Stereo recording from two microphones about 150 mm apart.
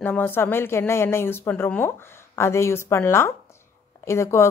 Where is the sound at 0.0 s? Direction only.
15° left (ahead or behind).